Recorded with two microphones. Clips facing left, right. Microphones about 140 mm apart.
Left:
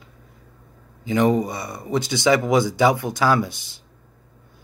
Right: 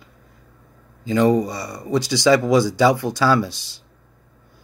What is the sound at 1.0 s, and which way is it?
Speech, 20° left (ahead or behind).